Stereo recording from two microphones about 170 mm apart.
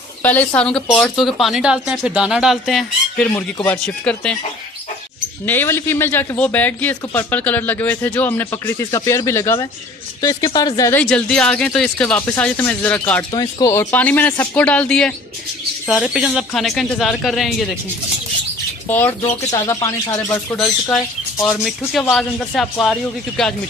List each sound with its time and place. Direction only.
0.2 s speech: 10° left (ahead or behind)
3.3 s speech: 15° left (ahead or behind)
5.4 s speech: 10° left (ahead or behind)
11.0 s speech: 5° left (ahead or behind)
13.3 s speech: 25° left (ahead or behind); by 17.6 s centre (ahead or behind)
18.9 s speech: 10° left (ahead or behind)